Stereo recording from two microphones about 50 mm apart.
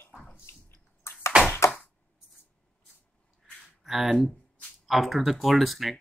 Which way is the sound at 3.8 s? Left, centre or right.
Centre.